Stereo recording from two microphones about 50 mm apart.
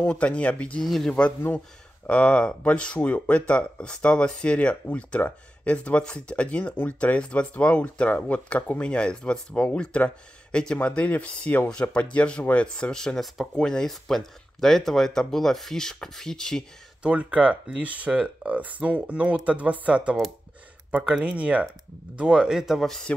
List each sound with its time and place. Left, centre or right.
0.1 s speech: left
0.8 s speech: centre
2.0 s speech: left
8.8 s speech: left
11.0 s speech: left; by 16.6 s centre
17.0 s speech: right